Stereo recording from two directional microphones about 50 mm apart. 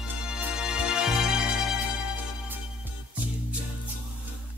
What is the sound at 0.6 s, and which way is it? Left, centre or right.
Music, centre.